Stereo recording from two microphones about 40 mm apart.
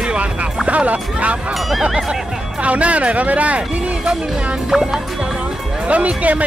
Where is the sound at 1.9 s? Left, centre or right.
Centre.